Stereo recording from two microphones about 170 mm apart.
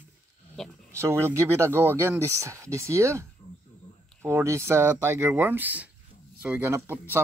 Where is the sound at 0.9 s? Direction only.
15° right (ahead or behind).